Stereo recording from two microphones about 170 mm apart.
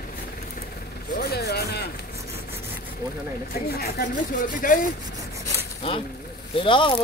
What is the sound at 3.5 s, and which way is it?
Speech, 65° left (ahead or behind).